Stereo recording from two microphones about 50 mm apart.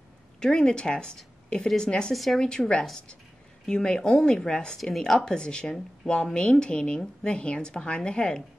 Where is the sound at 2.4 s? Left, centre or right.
Centre.